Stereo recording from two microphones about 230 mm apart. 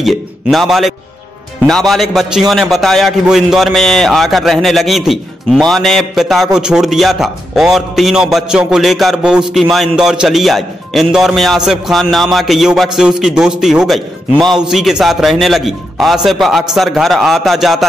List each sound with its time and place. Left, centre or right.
0.0 s a man's voice: centre